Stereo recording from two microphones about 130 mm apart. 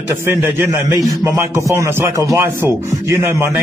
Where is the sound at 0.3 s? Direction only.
20° right (ahead or behind).